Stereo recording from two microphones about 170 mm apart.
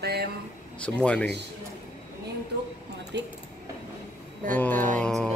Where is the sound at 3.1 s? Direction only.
90° right.